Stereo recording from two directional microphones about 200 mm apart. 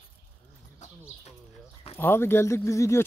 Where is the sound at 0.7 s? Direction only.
35° left (ahead or behind).